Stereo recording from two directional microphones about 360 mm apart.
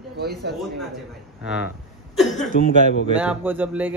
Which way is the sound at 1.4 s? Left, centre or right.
Centre.